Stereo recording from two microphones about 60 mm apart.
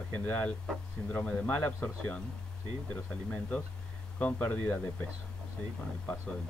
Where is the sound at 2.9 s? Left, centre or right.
Left.